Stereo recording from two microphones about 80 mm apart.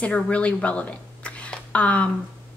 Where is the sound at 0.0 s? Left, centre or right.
Centre.